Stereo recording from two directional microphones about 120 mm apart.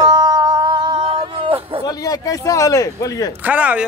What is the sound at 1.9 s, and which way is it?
A man's voice, 30° left (ahead or behind).